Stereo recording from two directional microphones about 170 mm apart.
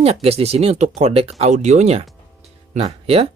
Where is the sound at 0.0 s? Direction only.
35° right (ahead or behind).